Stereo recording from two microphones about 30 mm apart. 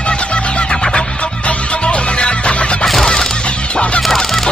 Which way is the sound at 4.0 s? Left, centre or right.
Centre.